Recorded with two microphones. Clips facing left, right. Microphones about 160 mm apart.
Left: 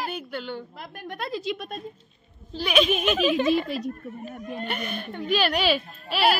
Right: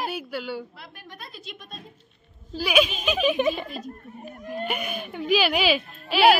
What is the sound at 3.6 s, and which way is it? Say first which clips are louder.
Speech: left 6 dB; 80° left.